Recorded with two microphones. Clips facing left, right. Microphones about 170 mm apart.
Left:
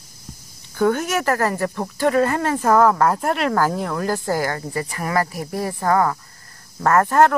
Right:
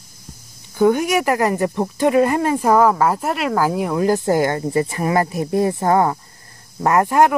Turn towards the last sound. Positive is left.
turn(degrees=-15)  # may be behind; listen again after turning